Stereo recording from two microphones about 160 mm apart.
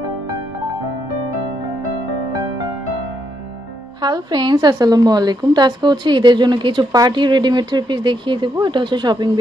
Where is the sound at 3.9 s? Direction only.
25° right (ahead or behind).